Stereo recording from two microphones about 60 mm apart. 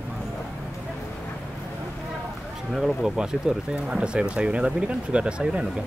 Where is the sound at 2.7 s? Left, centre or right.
Centre.